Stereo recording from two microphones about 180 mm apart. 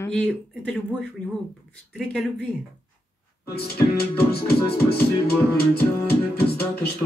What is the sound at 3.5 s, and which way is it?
Music, 60° left (ahead or behind).